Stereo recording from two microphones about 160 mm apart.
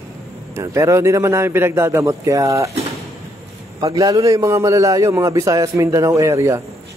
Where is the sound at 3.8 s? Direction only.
20° right (ahead or behind).